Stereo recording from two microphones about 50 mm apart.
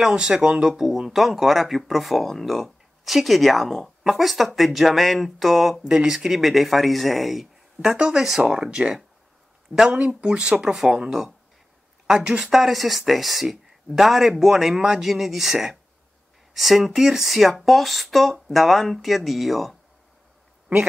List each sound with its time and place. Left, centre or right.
0.1 s speech: centre
7.9 s speech: centre
12.4 s speech: centre